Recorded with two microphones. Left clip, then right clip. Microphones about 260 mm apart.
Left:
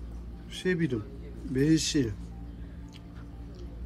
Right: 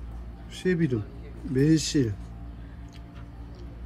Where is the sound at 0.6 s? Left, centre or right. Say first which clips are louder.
Right 3 dB; centre.